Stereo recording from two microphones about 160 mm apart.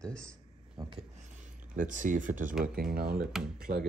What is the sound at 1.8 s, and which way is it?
Speech, 55° right (ahead or behind).